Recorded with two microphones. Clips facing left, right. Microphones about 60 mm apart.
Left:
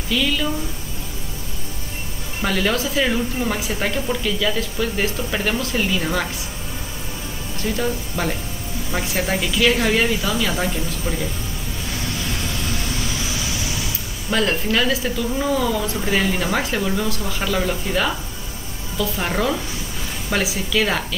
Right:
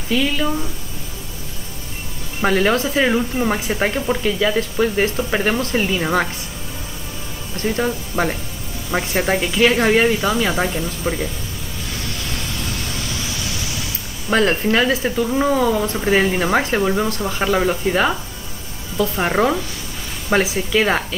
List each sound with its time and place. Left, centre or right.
0.1 s speech: right
2.4 s speech: right
7.5 s speech: right
14.3 s speech: right